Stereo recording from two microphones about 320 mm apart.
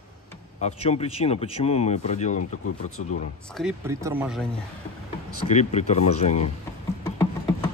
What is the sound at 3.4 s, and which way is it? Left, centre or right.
A man's voice, centre.